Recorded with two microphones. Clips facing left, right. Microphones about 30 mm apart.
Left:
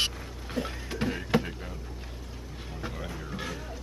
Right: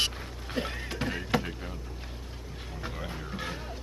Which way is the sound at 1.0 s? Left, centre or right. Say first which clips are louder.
Left 2 dB; centre.